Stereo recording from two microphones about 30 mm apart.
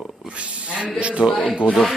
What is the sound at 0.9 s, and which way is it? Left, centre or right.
Speech, right.